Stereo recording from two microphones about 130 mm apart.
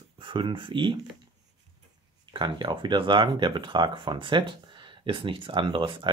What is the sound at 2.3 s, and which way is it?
Speech, 35° right (ahead or behind).